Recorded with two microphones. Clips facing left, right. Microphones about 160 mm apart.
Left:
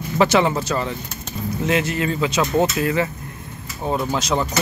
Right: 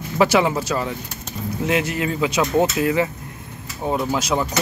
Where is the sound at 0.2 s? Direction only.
10° right (ahead or behind).